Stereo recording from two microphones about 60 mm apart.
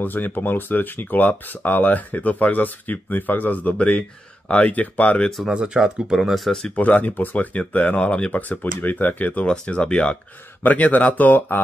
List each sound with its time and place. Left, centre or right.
0.0 s speech: left
3.7 s speech: centre
5.5 s speech: centre
6.2 s speech: centre
6.7 s speech: left
10.6 s speech: left